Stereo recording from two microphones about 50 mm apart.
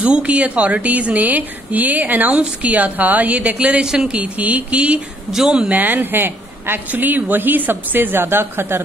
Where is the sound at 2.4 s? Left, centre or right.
Right.